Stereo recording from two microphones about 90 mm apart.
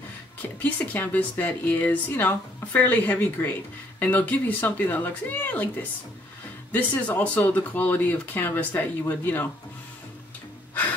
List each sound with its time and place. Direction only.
0.6 s speech: 20° left (ahead or behind)